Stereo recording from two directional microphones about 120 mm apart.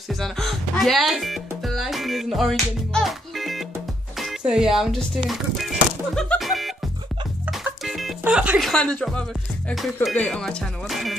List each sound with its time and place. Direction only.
0.1 s music: centre (ahead or behind)
4.2 s speech: 5° right (ahead or behind)
6.2 s music: 5° left (ahead or behind)
7.8 s music: centre (ahead or behind)
8.3 s speech: 10° right (ahead or behind)
8.6 s speech: 5° left (ahead or behind)